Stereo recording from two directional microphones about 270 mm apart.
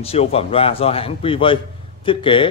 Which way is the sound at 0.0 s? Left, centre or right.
Left.